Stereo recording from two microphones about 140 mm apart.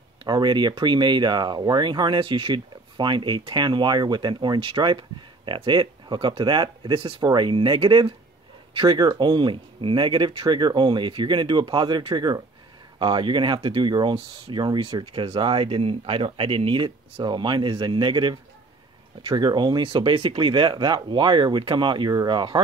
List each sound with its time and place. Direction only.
0.2 s speech: 30° right (ahead or behind)